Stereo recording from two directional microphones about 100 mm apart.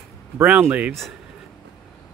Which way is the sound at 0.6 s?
15° right (ahead or behind).